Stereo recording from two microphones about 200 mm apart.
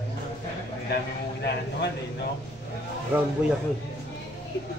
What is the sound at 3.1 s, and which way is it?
Speech, 10° right (ahead or behind).